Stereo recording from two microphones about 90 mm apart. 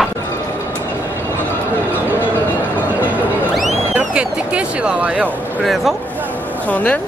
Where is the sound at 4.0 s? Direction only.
15° right (ahead or behind).